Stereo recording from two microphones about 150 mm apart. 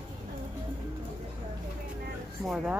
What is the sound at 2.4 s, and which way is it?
Speech, centre (ahead or behind).